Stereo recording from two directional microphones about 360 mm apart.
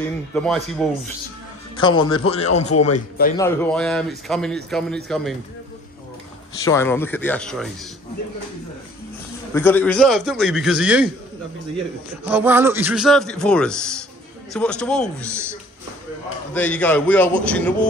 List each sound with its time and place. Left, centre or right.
0.3 s a man's voice: centre
1.8 s a man's voice: centre
2.7 s a man's voice: left
3.3 s a man's voice: centre
6.6 s a man's voice: centre
9.5 s a man's voice: centre
12.3 s a man's voice: centre
16.5 s a man's voice: centre